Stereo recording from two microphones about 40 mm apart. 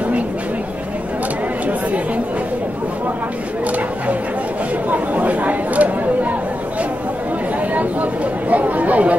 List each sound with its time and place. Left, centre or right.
4.9 s chatter: right
7.7 s chatter: right